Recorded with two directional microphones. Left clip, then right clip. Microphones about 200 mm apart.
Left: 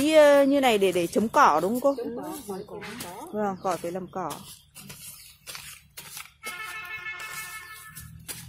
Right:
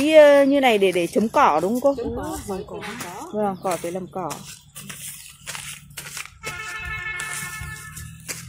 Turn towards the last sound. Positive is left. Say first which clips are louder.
# right 6 dB
turn(degrees=-50)  # may be behind; listen again after turning